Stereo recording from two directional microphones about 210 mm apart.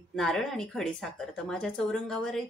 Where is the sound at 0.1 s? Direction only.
Centre (ahead or behind).